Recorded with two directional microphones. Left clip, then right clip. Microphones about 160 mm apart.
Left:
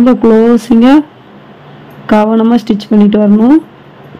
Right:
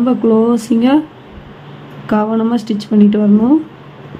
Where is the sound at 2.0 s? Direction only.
40° left (ahead or behind).